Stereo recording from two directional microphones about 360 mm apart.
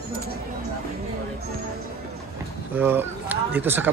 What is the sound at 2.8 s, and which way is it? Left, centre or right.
Speech, centre.